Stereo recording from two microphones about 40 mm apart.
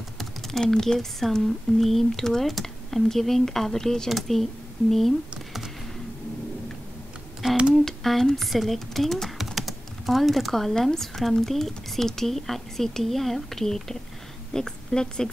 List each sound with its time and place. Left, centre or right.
0.2 s speech: centre
7.7 s speech: centre
9.4 s typing: centre
10.7 s a woman's voice: centre